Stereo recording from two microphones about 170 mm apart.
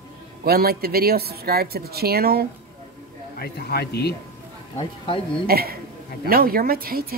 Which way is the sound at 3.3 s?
65° left (ahead or behind).